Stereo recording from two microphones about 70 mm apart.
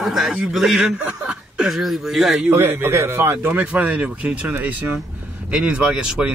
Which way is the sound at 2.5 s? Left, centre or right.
Right.